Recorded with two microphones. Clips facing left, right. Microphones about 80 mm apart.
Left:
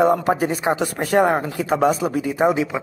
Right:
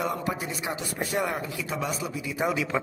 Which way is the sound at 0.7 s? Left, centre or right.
Left.